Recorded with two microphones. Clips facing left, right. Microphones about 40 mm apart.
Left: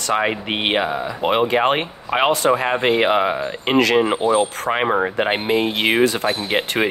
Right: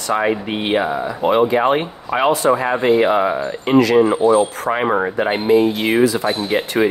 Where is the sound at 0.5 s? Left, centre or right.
Left.